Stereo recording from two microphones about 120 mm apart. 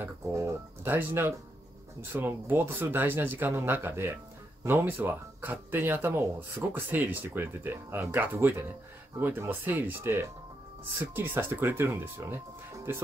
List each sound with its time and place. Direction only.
0.0 s speech: 25° right (ahead or behind)